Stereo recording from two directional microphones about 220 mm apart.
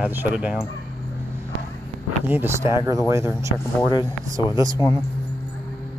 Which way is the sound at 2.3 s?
10° right (ahead or behind).